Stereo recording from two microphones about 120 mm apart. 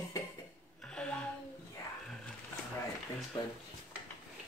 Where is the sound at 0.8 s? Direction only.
5° left (ahead or behind).